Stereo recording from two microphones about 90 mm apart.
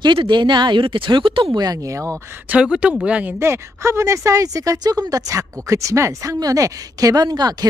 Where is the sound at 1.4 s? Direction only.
45° right (ahead or behind).